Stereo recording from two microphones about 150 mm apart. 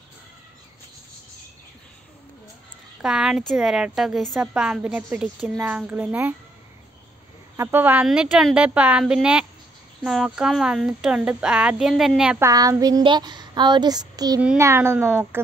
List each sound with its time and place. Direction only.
3.0 s a woman's voice: 5° right (ahead or behind)
7.5 s a woman's voice: 15° right (ahead or behind)
12.4 s speech: 20° right (ahead or behind)